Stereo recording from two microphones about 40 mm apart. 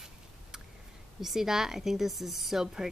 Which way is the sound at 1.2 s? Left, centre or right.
Centre.